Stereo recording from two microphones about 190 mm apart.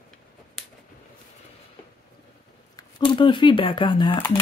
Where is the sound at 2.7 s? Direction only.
25° left (ahead or behind).